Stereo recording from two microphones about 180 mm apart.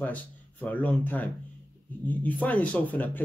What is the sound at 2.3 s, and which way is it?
Speech, 10° left (ahead or behind).